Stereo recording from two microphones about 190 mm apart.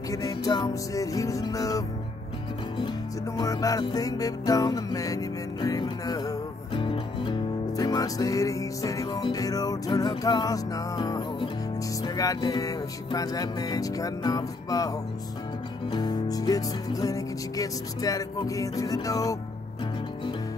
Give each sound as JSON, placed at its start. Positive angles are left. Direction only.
{"t": 0.1, "sound": "music", "side_deg": 20}
{"t": 3.3, "sound": "music", "side_deg": 20}